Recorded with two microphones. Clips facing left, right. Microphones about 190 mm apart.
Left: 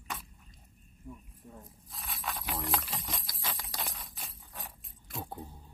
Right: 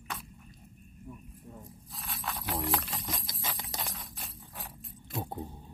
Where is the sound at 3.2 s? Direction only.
20° right (ahead or behind).